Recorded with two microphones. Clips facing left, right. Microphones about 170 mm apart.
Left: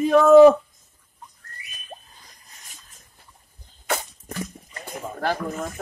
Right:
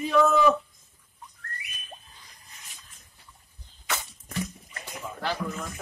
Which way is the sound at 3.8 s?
45° left (ahead or behind).